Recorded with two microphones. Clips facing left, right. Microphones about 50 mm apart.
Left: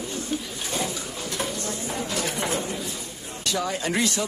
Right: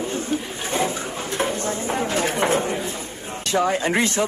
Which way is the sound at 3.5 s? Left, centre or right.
Right.